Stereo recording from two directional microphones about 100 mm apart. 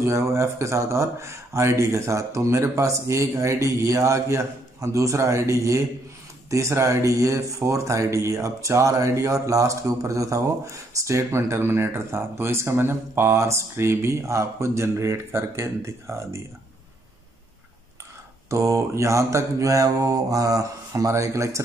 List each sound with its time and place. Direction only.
0.0 s speech: 30° right (ahead or behind)
18.5 s mantra: 30° right (ahead or behind)